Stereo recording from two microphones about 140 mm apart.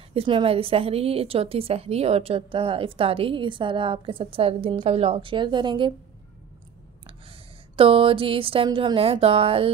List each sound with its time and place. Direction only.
0.1 s a woman's voice: 40° right (ahead or behind)
7.1 s speech: 40° right (ahead or behind)